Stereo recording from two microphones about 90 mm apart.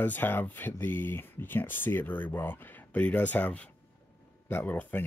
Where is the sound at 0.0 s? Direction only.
20° left (ahead or behind).